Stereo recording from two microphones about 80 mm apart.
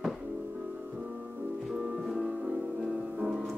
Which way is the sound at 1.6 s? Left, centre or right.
Centre.